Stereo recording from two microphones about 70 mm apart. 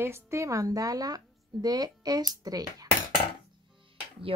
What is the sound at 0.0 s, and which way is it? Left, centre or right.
Speech, right.